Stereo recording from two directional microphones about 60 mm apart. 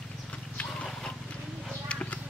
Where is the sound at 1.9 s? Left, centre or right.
Left.